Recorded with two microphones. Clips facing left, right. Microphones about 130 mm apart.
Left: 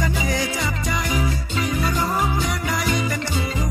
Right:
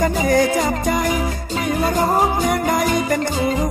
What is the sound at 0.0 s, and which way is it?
Music, 50° right (ahead or behind).